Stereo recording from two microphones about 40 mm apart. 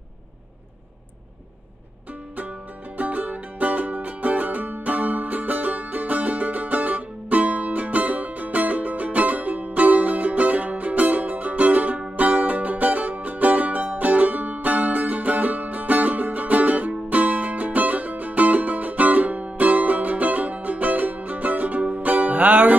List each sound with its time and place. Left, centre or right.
3.0 s music: right